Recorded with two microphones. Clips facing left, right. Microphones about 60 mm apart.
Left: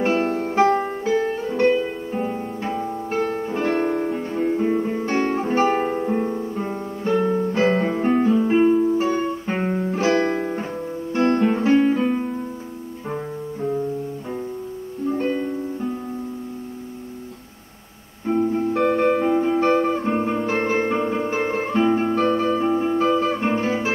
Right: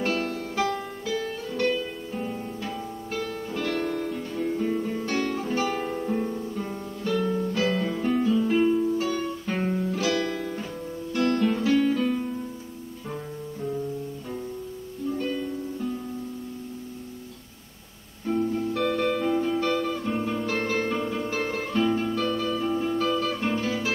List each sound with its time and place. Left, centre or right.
0.0 s music: left
15.0 s music: left
18.2 s music: left